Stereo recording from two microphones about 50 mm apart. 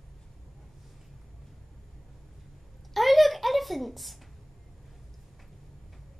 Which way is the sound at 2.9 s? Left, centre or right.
Centre.